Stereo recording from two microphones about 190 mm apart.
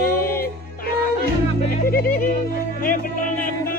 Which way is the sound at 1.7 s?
50° left (ahead or behind).